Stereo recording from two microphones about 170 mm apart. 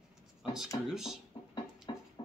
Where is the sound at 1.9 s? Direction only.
25° left (ahead or behind).